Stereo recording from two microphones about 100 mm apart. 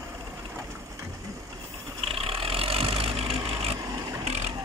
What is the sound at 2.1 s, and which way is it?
Vehicle, 70° right (ahead or behind).